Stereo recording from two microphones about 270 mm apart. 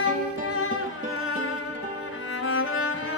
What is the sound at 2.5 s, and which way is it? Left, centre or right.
Music, left.